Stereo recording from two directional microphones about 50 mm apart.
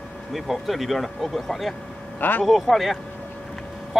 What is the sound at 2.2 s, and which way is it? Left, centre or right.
Speech, left.